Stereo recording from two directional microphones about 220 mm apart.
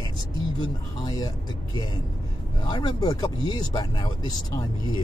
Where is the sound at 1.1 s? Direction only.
15° left (ahead or behind).